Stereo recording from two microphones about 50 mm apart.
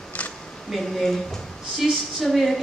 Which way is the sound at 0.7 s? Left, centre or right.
Centre.